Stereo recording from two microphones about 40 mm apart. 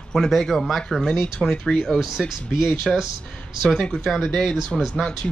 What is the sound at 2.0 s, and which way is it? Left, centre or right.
Speech, centre.